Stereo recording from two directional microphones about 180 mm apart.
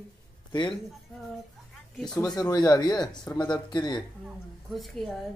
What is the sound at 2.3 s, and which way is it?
Speech, 20° left (ahead or behind).